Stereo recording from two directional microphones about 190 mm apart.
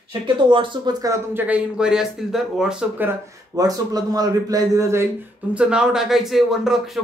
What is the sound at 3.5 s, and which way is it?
A man's voice, 20° right (ahead or behind).